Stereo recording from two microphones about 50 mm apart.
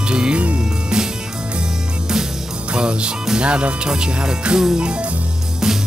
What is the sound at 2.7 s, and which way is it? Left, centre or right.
Speech, centre.